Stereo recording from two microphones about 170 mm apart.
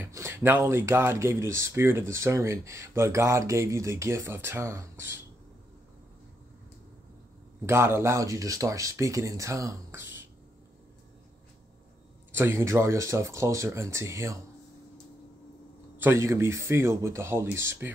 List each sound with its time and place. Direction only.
0.0 s speech: 15° right (ahead or behind)
7.6 s speech: 15° right (ahead or behind)
12.3 s speech: 15° right (ahead or behind)
16.0 s speech: 15° right (ahead or behind)